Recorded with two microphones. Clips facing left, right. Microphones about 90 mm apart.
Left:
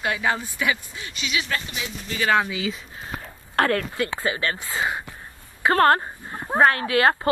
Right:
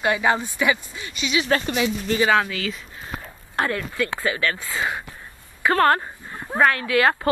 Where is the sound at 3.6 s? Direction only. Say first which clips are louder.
Left 3 dB; 65° left (ahead or behind).